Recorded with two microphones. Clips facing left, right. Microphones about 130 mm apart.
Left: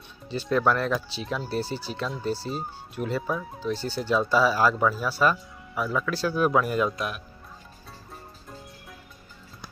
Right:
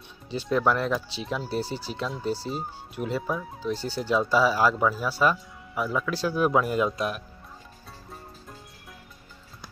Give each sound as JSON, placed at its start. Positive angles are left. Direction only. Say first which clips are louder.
{"t": 0.5, "sound": "speech", "louder": "even", "side_deg": -10}
{"t": 3.2, "sound": "speech", "louder": "even", "side_deg": -5}
{"t": 3.6, "sound": "speech", "louder": "even", "side_deg": -15}